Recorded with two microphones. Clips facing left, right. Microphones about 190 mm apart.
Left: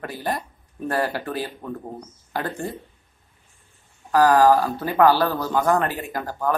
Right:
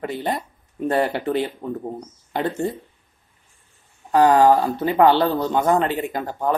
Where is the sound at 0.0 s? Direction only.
20° right (ahead or behind).